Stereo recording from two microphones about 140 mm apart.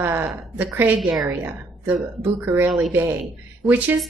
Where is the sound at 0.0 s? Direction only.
15° right (ahead or behind).